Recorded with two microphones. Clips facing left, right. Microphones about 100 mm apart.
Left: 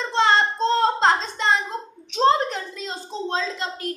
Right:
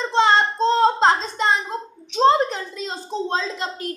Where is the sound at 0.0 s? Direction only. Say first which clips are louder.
Right 2 dB; centre (ahead or behind).